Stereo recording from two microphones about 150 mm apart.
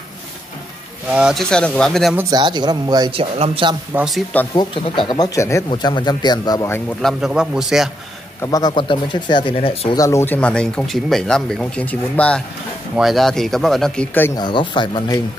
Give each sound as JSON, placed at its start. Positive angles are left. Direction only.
{"t": 1.1, "sound": "speech", "side_deg": 0}
{"t": 2.3, "sound": "speech", "side_deg": -30}
{"t": 3.9, "sound": "speech", "side_deg": -5}
{"t": 5.0, "sound": "speech", "side_deg": 25}
{"t": 7.0, "sound": "speech", "side_deg": 0}
{"t": 8.4, "sound": "speech", "side_deg": 25}
{"t": 9.9, "sound": "speech", "side_deg": 20}
{"t": 14.3, "sound": "speech", "side_deg": 30}